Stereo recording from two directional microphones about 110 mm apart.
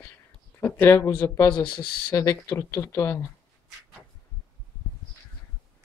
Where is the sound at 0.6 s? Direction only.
20° left (ahead or behind).